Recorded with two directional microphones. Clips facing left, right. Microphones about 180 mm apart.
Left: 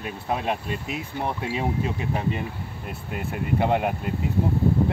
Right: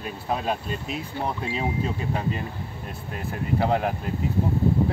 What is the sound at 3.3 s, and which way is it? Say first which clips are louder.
Speech: left 1 dB; 5° left (ahead or behind).